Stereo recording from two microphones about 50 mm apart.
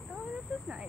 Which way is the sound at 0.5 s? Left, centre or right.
Centre.